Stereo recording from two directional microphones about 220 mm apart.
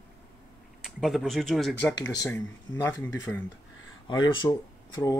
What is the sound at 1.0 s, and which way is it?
Speech, centre (ahead or behind).